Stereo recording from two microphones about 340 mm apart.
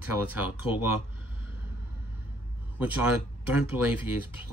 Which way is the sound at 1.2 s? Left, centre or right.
Right.